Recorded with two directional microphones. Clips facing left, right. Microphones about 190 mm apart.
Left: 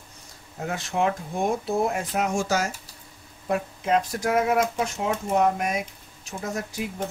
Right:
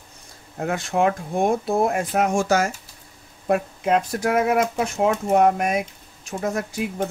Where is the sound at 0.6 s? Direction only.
55° right (ahead or behind).